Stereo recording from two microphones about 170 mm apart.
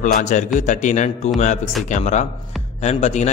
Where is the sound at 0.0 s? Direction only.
45° left (ahead or behind).